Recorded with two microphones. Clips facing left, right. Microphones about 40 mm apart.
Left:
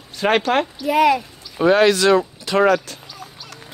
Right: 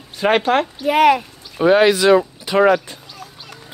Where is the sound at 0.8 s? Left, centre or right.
Right.